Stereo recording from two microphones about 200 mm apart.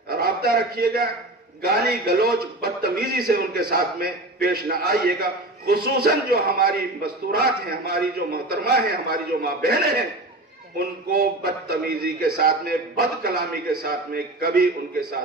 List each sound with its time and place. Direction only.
0.1 s a man's voice: 50° right (ahead or behind)